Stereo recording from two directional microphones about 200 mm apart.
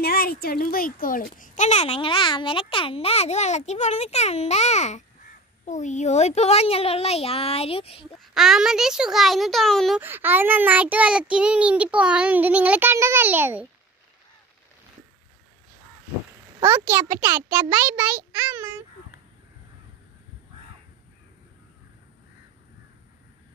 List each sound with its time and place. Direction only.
0.0 s a child's voice: 50° left (ahead or behind); by 8.1 s 30° left (ahead or behind)
8.2 s speech: centre (ahead or behind)
16.5 s speech: 10° right (ahead or behind)